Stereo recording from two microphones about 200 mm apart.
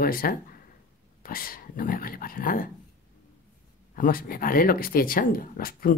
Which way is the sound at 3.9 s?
45° left (ahead or behind).